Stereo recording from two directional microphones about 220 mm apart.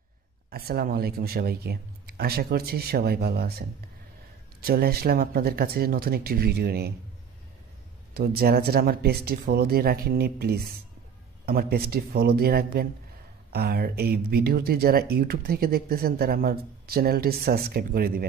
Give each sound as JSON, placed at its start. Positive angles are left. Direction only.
{"t": 0.5, "sound": "speech", "side_deg": -45}
{"t": 8.1, "sound": "speech", "side_deg": -45}